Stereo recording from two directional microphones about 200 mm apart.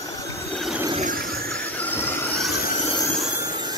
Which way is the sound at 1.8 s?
10° left (ahead or behind).